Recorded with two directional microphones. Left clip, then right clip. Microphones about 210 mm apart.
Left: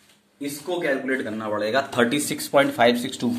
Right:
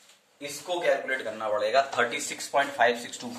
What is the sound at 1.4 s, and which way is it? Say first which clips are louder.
Speech: right 1 dB; 35° left (ahead or behind).